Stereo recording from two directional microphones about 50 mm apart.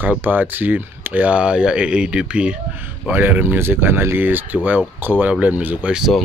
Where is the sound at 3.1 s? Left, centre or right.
Right.